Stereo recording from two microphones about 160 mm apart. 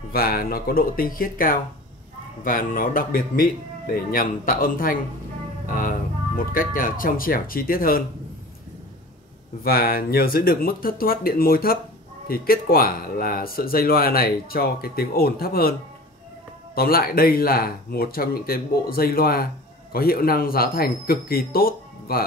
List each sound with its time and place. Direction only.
0.1 s speech: 70° left (ahead or behind)
9.7 s speech: 65° left (ahead or behind)
16.7 s speech: 70° left (ahead or behind)